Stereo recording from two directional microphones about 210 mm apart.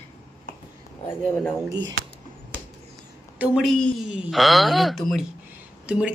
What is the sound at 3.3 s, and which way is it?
Speech, 5° right (ahead or behind).